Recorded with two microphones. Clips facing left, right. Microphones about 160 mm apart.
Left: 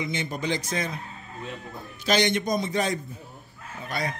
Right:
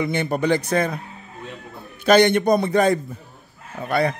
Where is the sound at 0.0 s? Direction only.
60° right (ahead or behind).